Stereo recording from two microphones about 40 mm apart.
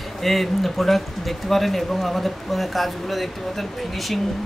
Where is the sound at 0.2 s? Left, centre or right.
Centre.